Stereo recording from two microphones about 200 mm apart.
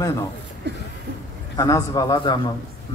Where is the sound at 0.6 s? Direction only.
55° right (ahead or behind).